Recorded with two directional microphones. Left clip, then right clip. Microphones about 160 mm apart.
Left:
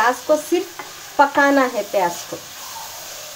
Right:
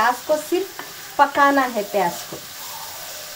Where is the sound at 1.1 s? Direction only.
45° left (ahead or behind).